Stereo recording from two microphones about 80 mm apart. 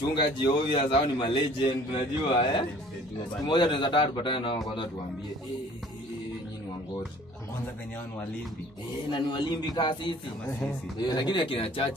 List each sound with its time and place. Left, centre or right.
0.0 s a man's voice: left
9.1 s a man's voice: left
11.0 s speech: left